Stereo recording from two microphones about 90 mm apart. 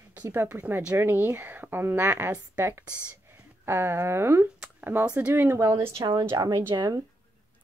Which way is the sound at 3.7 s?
25° right (ahead or behind).